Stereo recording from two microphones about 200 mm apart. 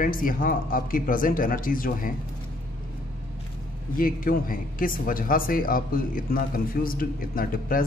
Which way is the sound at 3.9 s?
45° left (ahead or behind).